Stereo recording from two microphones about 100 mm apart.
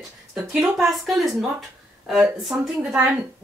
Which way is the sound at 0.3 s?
10° right (ahead or behind).